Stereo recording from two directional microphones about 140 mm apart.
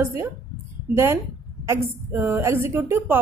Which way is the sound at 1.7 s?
15° right (ahead or behind).